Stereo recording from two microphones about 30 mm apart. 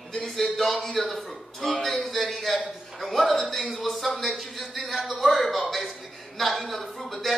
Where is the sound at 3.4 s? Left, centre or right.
Centre.